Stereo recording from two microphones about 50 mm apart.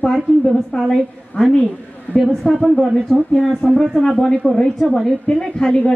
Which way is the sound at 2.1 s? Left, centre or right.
Left.